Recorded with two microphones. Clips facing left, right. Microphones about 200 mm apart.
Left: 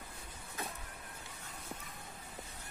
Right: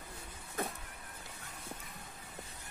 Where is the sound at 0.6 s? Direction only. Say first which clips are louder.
Right 6 dB; 50° right (ahead or behind).